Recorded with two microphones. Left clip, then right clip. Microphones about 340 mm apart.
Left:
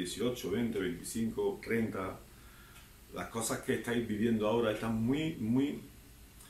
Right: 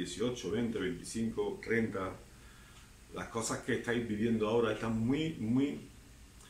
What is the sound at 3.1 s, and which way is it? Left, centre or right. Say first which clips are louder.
Speech: even; centre.